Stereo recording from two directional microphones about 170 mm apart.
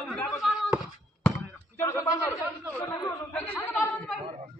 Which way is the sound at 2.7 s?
20° left (ahead or behind).